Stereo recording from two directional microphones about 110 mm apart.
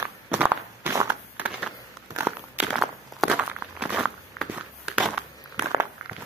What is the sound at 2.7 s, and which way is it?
Walk, 5° right (ahead or behind).